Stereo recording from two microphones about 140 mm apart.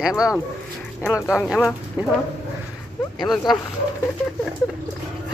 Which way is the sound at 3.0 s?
30° left (ahead or behind).